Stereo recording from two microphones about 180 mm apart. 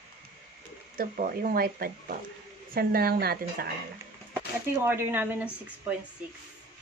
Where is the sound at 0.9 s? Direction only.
50° right (ahead or behind).